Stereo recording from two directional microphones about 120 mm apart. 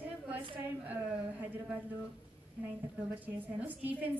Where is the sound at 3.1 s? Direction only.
15° right (ahead or behind).